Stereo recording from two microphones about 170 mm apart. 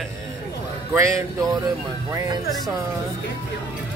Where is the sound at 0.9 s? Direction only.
15° right (ahead or behind).